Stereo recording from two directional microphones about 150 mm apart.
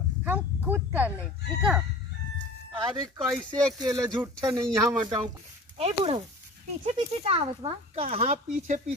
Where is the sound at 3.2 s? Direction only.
5° left (ahead or behind).